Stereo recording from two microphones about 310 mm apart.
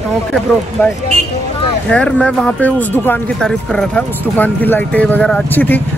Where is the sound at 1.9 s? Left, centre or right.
Centre.